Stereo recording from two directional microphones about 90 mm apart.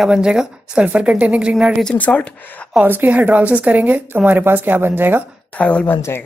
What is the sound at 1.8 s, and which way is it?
Speech, 15° left (ahead or behind).